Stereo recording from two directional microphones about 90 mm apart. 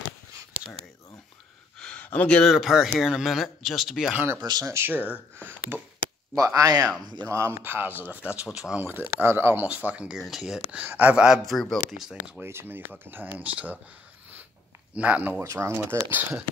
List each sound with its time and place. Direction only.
1.8 s a sound: 10° left (ahead or behind)
2.0 s speech: 15° left (ahead or behind)
2.5 s speech: 5° right (ahead or behind)
4.4 s speech: 45° right (ahead or behind)
4.7 s speech: 20° right (ahead or behind)
6.3 s speech: 40° right (ahead or behind); by 8.8 s 10° right (ahead or behind)
9.2 s speech: 25° right (ahead or behind)
9.8 s speech: 10° right (ahead or behind)
12.4 s speech: 25° right (ahead or behind)
15.0 s speech: 15° right (ahead or behind)
15.4 s speech: 30° right (ahead or behind)